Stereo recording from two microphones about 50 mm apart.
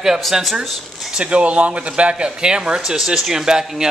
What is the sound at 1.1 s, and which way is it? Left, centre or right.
Speech, centre.